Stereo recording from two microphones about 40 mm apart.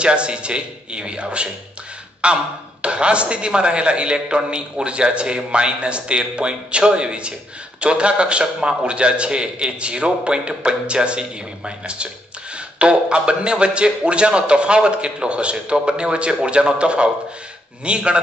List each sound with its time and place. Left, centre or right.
0.0 s a man's voice: right